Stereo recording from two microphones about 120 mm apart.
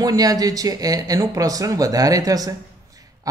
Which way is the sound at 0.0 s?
30° right (ahead or behind).